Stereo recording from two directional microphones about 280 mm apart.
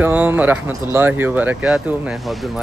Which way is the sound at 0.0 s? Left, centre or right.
Centre.